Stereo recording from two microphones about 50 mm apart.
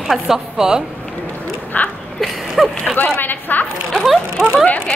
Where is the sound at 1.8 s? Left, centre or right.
Left.